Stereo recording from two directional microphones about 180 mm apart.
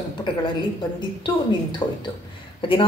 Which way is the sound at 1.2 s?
25° left (ahead or behind).